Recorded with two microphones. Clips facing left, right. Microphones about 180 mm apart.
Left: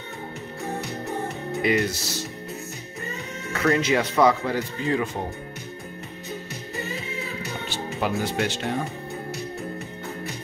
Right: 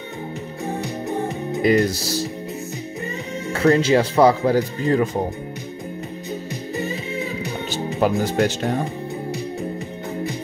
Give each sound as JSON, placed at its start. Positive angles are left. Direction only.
{"t": 1.6, "sound": "speech", "side_deg": -35}
{"t": 3.5, "sound": "speech", "side_deg": -30}
{"t": 7.7, "sound": "speech", "side_deg": -40}